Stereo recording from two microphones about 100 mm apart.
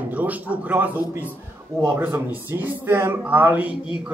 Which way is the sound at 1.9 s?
20° right (ahead or behind).